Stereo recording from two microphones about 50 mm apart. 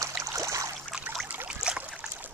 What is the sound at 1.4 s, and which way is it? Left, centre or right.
Boat, centre.